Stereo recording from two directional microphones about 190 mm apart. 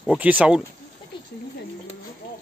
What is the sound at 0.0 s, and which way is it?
Speech, 5° right (ahead or behind).